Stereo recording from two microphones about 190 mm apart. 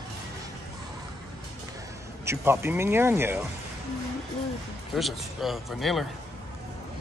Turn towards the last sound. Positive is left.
turn(degrees=0)  # may be behind; listen again after turning